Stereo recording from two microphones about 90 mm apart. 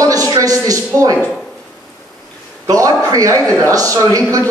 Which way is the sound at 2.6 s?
40° right (ahead or behind).